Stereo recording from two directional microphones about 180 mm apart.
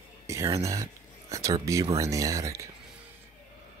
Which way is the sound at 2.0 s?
20° right (ahead or behind).